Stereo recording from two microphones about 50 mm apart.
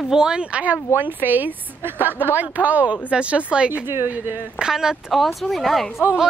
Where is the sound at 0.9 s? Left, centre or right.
Right.